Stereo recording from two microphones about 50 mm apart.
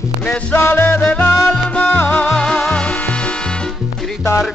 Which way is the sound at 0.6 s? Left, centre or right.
Left.